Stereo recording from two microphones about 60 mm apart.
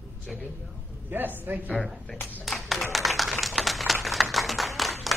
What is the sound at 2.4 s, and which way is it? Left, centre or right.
Applause, centre.